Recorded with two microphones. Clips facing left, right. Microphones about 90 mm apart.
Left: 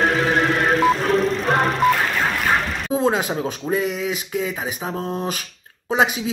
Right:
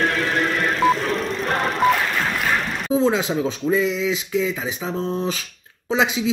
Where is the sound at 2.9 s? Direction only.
55° left (ahead or behind).